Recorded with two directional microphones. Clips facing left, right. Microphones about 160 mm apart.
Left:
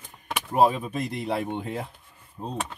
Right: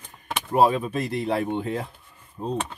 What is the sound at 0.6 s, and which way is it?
Speech, 15° left (ahead or behind).